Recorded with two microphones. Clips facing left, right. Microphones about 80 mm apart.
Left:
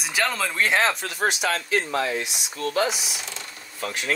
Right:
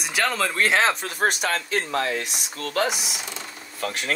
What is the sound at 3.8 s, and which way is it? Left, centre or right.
Speech, right.